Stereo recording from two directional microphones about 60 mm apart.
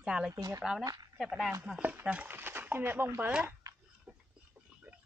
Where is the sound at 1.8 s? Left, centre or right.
Right.